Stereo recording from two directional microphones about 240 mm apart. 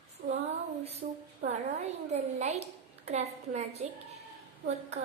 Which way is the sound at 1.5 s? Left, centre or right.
Right.